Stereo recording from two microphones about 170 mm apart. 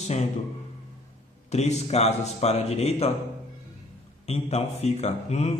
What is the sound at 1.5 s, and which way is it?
A man's voice, 40° left (ahead or behind).